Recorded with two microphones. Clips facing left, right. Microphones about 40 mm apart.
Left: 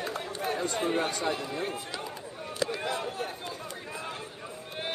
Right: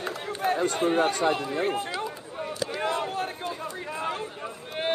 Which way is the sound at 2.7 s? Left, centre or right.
Right.